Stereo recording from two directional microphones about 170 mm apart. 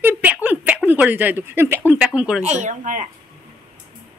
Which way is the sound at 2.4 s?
45° right (ahead or behind).